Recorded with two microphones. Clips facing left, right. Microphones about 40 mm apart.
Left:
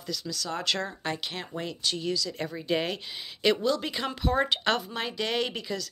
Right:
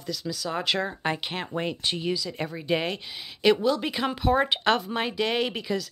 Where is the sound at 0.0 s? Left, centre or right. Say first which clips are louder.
Right 3 dB; centre.